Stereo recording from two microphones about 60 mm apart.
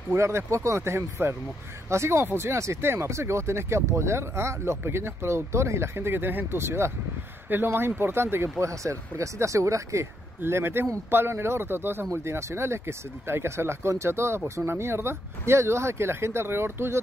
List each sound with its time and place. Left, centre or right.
0.1 s speech: right
8.6 s speech: right
10.4 s speech: right